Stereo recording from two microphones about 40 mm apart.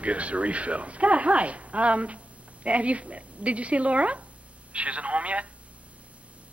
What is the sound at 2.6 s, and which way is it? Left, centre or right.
A woman's voice, right.